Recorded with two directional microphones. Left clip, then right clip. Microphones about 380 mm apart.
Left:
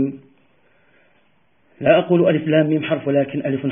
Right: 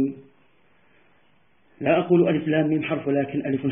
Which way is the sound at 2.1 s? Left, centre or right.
Left.